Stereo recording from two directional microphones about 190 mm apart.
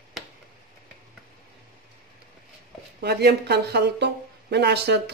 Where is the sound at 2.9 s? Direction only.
60° right (ahead or behind).